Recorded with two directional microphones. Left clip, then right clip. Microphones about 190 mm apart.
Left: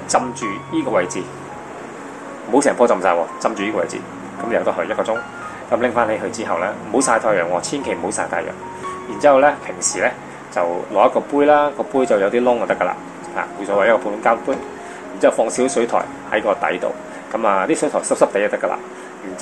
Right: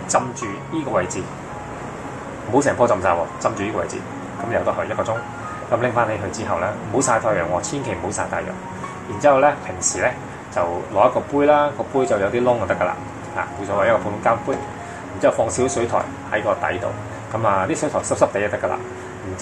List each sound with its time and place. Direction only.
0.1 s speech: 50° left (ahead or behind)
2.5 s speech: 45° left (ahead or behind)
9.2 s speech: 45° left (ahead or behind)